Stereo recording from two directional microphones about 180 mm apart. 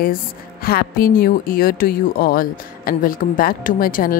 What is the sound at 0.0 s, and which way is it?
A woman's voice, 55° left (ahead or behind).